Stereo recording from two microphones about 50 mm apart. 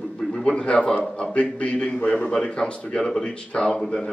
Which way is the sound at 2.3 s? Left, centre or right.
Centre.